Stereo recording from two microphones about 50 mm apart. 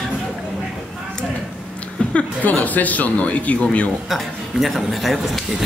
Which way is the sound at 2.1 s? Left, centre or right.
Left.